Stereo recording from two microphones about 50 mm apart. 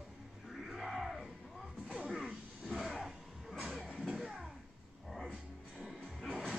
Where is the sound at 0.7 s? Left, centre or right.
Centre.